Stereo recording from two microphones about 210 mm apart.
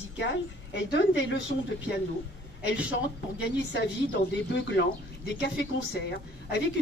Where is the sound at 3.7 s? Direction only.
55° left (ahead or behind).